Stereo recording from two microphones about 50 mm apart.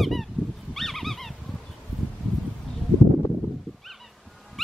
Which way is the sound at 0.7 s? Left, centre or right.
Centre.